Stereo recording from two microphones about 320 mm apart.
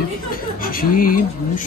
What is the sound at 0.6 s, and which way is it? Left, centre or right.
Speech, left.